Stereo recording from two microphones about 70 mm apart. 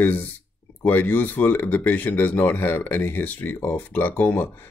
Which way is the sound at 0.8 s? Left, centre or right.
Left.